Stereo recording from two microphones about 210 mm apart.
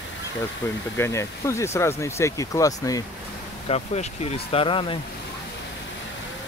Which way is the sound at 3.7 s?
30° left (ahead or behind).